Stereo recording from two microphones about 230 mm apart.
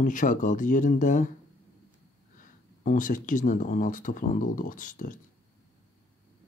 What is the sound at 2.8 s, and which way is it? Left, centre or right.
Speech, left.